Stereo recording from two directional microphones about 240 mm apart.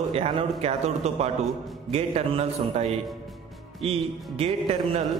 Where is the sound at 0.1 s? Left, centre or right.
Right.